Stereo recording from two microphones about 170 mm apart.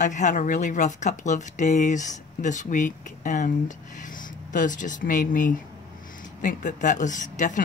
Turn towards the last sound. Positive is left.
turn(degrees=45)  # may be behind; listen again after turning